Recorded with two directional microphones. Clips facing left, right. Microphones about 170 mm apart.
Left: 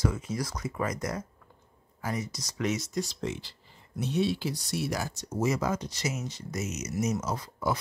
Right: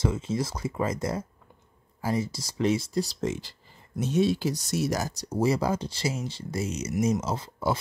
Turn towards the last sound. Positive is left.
turn(degrees=-25)  # may be behind; listen again after turning